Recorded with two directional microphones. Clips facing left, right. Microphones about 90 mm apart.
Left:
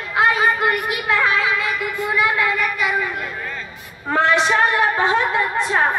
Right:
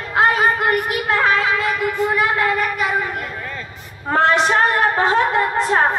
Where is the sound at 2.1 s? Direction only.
40° right (ahead or behind).